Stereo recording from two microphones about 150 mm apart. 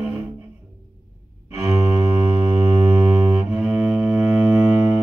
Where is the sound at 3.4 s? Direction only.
10° right (ahead or behind).